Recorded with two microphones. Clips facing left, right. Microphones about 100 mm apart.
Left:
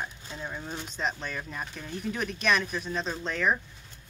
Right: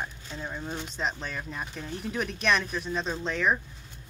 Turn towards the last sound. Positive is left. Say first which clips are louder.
# right 1 dB
turn(degrees=0)  # may be behind; listen again after turning